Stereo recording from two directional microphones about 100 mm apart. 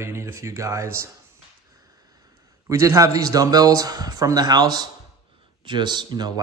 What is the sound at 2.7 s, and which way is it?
Speech, 30° right (ahead or behind).